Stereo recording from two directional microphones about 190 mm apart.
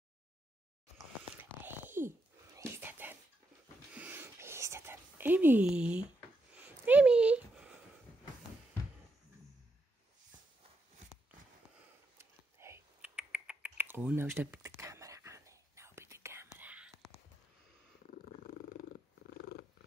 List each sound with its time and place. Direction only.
0.9 s a sound: 10° right (ahead or behind)
3.9 s whispering: 10° right (ahead or behind)
6.5 s a sound: 10° right (ahead or behind)
12.2 s typing: 15° right (ahead or behind)
16.5 s whispering: 10° right (ahead or behind)
18.1 s purr: 40° left (ahead or behind)